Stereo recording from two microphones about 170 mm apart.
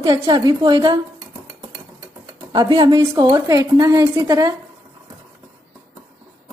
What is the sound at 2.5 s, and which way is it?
A woman's voice, 25° right (ahead or behind).